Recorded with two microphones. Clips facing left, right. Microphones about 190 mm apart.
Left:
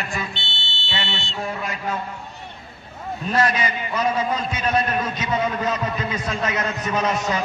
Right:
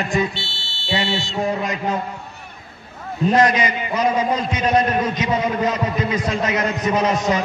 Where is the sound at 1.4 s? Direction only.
20° right (ahead or behind).